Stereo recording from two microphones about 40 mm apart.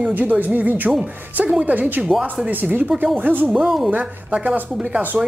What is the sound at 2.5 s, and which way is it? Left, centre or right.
Speech, right.